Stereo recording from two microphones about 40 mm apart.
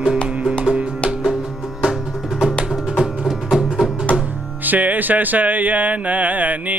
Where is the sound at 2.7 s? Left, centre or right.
Centre.